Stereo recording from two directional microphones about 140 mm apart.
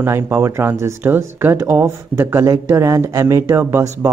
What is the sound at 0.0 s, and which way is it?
Speech, 20° right (ahead or behind).